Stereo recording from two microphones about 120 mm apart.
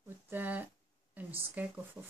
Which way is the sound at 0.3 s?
15° right (ahead or behind).